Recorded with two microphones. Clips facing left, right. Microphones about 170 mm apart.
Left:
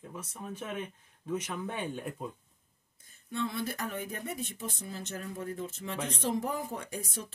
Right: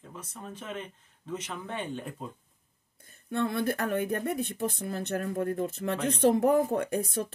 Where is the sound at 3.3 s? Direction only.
55° right (ahead or behind).